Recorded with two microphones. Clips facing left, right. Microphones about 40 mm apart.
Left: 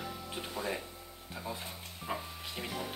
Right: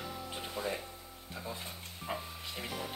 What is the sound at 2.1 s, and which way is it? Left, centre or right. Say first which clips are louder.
Music: left 1 dB; centre.